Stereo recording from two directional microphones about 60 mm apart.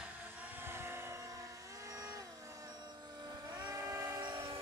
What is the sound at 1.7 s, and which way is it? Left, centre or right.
Vehicle, right.